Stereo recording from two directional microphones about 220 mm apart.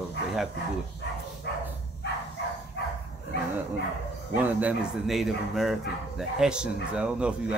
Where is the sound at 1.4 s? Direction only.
50° left (ahead or behind).